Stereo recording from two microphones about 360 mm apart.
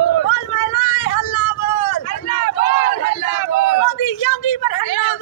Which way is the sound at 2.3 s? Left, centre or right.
Left.